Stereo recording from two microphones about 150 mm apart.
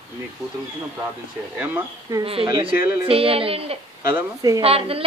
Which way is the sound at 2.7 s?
15° right (ahead or behind).